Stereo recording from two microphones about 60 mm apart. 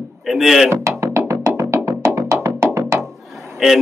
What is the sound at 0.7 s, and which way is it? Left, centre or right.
Music, right.